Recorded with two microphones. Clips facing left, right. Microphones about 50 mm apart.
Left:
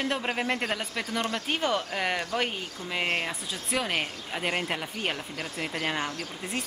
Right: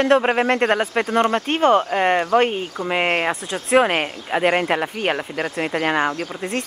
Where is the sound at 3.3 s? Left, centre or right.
Right.